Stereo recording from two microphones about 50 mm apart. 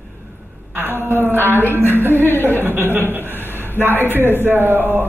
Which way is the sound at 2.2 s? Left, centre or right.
Left.